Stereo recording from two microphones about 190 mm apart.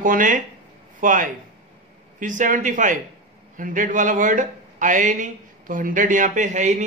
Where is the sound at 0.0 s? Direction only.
45° right (ahead or behind).